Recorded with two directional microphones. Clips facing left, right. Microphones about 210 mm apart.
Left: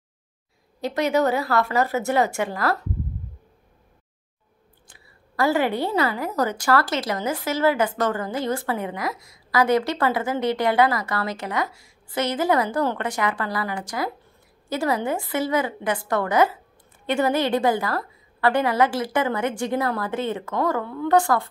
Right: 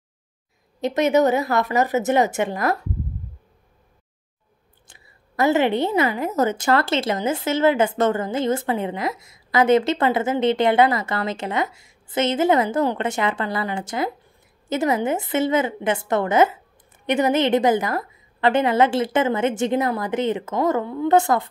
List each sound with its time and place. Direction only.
0.7 s a woman's voice: 20° right (ahead or behind)
5.0 s a woman's voice: 20° right (ahead or behind)